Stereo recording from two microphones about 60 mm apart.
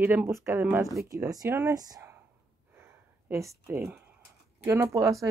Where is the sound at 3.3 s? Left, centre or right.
Right.